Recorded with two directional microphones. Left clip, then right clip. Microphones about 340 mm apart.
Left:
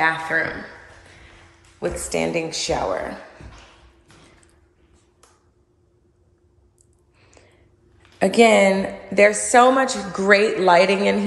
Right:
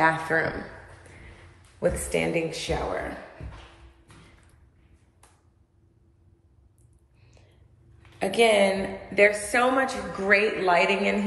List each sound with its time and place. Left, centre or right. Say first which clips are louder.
0.0 s speech: left 3 dB; centre
1.8 s a woman's voice: left 2 dB; centre
8.2 s a woman's voice: left 6 dB; centre